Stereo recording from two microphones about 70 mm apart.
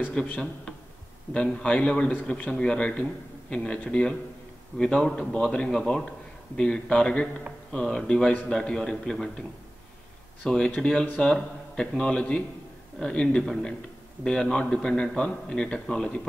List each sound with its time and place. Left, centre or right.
0.1 s a man's voice: centre
10.4 s a man's voice: centre